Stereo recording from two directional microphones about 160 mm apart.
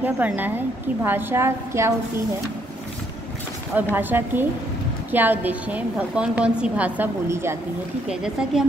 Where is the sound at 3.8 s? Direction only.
10° right (ahead or behind).